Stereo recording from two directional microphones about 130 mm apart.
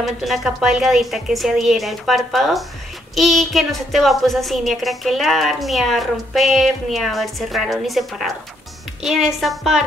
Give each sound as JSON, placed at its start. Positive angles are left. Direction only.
{"t": 0.0, "sound": "a woman's voice", "side_deg": 0}